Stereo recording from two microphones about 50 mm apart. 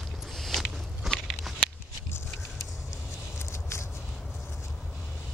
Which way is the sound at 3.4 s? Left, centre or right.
Left.